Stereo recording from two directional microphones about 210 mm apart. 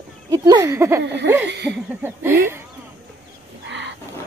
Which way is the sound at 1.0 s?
55° right (ahead or behind).